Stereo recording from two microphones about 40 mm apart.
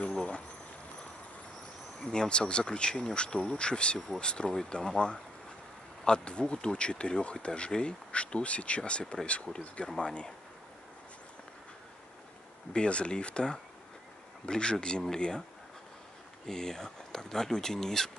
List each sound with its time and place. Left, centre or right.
0.1 s a sound: left
2.0 s speech: left
9.8 s speech: centre
12.7 s speech: left
16.4 s speech: centre